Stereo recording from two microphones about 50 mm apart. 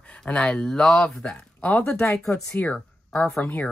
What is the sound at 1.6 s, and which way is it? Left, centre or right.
Speech, left.